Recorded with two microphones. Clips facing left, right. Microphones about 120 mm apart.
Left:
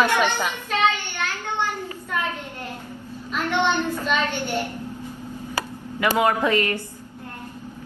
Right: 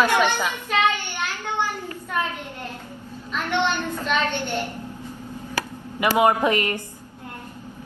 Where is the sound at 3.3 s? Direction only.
10° left (ahead or behind).